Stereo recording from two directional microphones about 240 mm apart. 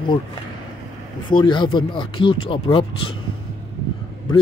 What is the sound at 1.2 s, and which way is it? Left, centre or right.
Speech, centre.